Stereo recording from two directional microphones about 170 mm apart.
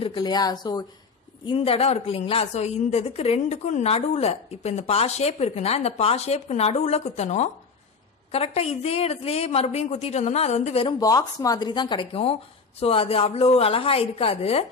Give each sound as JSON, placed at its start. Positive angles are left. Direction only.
{"t": 0.0, "sound": "a woman's voice", "side_deg": 25}
{"t": 11.0, "sound": "a woman's voice", "side_deg": 20}